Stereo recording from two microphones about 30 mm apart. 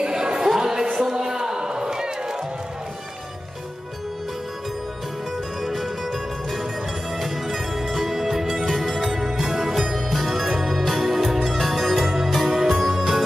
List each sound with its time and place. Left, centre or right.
0.0 s a sound: right
0.6 s music: centre
1.1 s a sound: right
5.6 s music: centre
7.2 s music: centre
8.6 s music: centre
9.1 s music: centre
9.8 s music: centre